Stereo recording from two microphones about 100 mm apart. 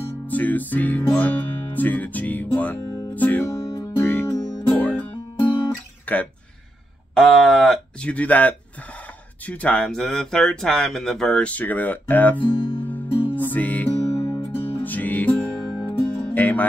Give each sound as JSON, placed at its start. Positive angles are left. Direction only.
{"t": 0.3, "sound": "speech", "side_deg": 15}
{"t": 1.1, "sound": "music", "side_deg": 15}
{"t": 6.1, "sound": "speech", "side_deg": 15}
{"t": 7.2, "sound": "speech", "side_deg": 5}
{"t": 12.4, "sound": "speech", "side_deg": 60}
{"t": 13.1, "sound": "music", "side_deg": 60}
{"t": 13.4, "sound": "music", "side_deg": 15}